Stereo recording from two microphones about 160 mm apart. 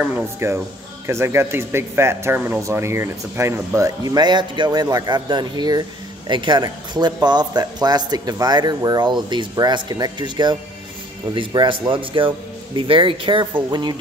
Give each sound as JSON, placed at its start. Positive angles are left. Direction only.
{"t": 0.0, "sound": "a man's voice", "side_deg": -15}